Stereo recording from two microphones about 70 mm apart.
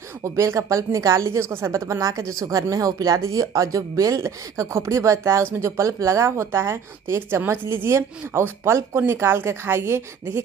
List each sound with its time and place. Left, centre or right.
0.2 s speech: right
5.9 s a woman's voice: right